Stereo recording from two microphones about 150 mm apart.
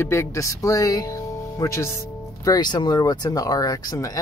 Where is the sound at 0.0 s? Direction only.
15° left (ahead or behind).